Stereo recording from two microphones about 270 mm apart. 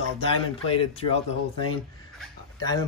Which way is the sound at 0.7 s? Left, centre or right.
Left.